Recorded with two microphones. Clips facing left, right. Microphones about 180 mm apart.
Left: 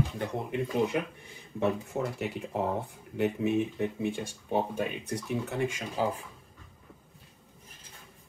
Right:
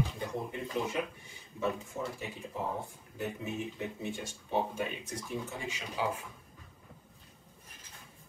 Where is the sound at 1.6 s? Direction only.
65° left (ahead or behind); by 6.0 s 50° left (ahead or behind).